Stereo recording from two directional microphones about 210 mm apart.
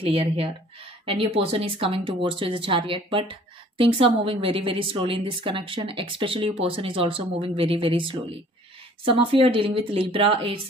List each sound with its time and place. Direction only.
0.0 s speech: 25° right (ahead or behind)